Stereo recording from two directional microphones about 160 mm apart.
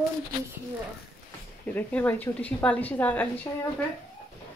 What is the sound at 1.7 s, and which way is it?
A woman's voice, 10° left (ahead or behind).